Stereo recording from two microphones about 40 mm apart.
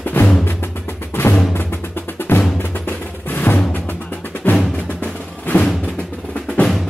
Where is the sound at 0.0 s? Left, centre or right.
Left.